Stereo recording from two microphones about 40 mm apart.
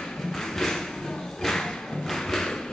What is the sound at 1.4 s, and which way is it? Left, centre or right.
Thump, centre.